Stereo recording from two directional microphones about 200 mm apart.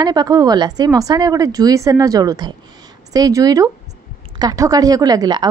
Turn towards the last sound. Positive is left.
turn(degrees=-20)  # may be behind; listen again after turning